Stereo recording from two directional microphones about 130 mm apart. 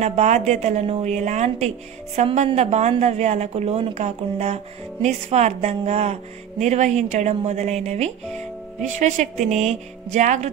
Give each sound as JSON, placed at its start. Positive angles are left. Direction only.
{"t": 0.0, "sound": "a woman's voice", "side_deg": -60}
{"t": 8.8, "sound": "a woman's voice", "side_deg": -70}